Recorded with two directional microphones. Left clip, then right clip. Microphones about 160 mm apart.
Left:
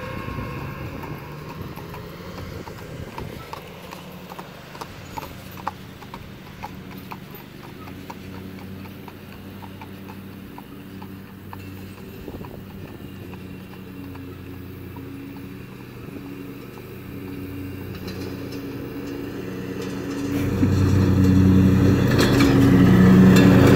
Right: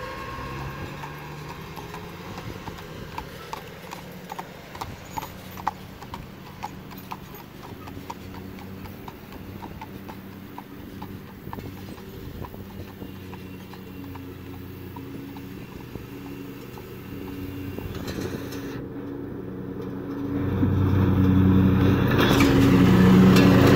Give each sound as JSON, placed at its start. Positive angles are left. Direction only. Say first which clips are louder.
{"t": 0.0, "sound": "vehicle", "louder": "left 1 dB", "side_deg": 5}
{"t": 17.9, "sound": "vehicle", "louder": "right 2 dB", "side_deg": 15}
{"t": 19.4, "sound": "vehicle", "louder": "left 4 dB", "side_deg": 30}
{"t": 19.8, "sound": "vehicle", "louder": "left 3 dB", "side_deg": 15}